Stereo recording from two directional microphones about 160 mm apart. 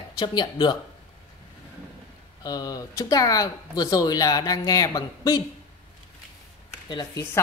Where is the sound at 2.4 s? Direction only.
25° left (ahead or behind).